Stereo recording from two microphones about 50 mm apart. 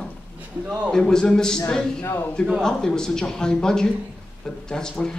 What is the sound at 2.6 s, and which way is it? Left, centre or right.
Speech, centre.